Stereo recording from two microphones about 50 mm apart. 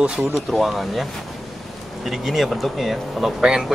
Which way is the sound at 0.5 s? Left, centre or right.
Centre.